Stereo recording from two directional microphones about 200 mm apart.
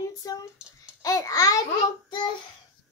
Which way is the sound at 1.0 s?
15° left (ahead or behind).